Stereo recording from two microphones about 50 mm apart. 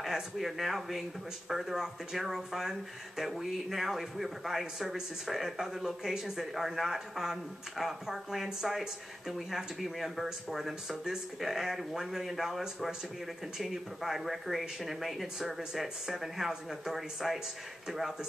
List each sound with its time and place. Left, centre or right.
0.0 s speech: centre